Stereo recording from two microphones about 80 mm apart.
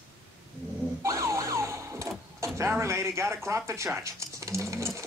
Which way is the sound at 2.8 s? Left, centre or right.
Right.